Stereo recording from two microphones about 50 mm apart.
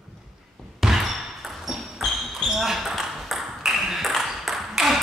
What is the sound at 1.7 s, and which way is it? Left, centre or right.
Ping, centre.